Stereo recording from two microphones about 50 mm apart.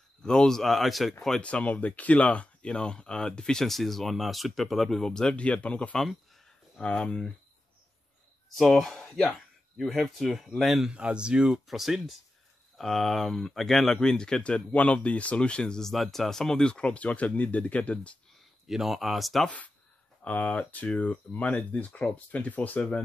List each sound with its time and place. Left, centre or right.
0.2 s speech: centre
1.4 s speech: left
3.6 s speech: centre
5.3 s speech: left
8.5 s speech: centre
10.9 s speech: centre
11.5 s speech: centre
15.9 s speech: centre; by 18.1 s left
18.7 s speech: centre
19.4 s speech: left